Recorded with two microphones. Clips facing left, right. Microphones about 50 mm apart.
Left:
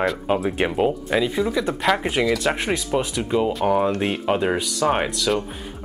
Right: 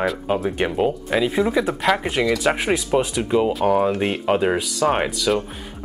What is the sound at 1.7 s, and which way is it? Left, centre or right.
Speech, centre.